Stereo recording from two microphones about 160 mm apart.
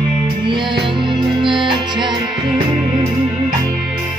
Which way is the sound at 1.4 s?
30° right (ahead or behind).